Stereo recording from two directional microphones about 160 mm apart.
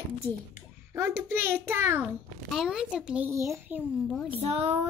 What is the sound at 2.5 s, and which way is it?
Speech, 5° right (ahead or behind).